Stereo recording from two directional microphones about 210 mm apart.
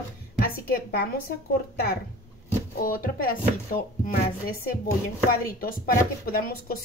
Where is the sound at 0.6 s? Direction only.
45° left (ahead or behind).